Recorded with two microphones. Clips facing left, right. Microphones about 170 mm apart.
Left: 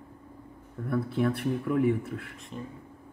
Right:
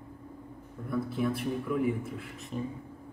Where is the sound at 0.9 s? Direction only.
65° left (ahead or behind).